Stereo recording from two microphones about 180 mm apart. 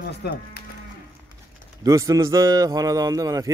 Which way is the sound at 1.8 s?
20° right (ahead or behind).